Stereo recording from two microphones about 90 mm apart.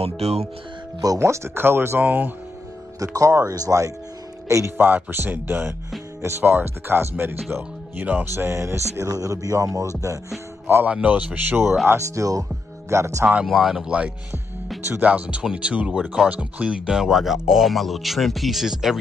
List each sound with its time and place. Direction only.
1.0 s speech: 35° right (ahead or behind); by 2.3 s 20° right (ahead or behind)
3.0 s speech: 35° right (ahead or behind)
4.7 s speech: 20° right (ahead or behind)
8.5 s speech: 30° right (ahead or behind)
10.7 s speech: 20° right (ahead or behind)
11.9 s speech: 40° right (ahead or behind)
13.5 s speech: 5° right (ahead or behind)